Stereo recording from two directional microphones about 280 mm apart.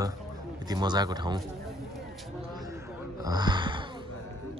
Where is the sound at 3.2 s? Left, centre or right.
Centre.